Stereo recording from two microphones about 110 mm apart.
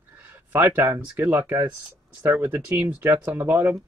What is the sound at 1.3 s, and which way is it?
Speech, 15° right (ahead or behind).